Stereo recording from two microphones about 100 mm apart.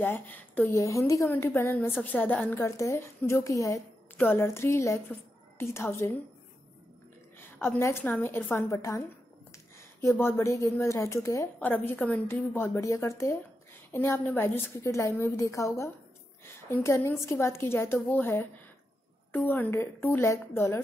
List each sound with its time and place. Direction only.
0.0 s a woman's voice: 20° left (ahead or behind)
0.7 s a woman's voice: 30° left (ahead or behind)
7.3 s a sound: 20° left (ahead or behind)
8.0 s a woman's voice: 20° left (ahead or behind)
11.6 s a woman's voice: 20° left (ahead or behind)